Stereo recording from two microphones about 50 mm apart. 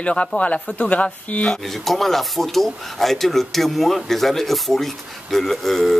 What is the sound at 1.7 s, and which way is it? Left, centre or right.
Speech, centre.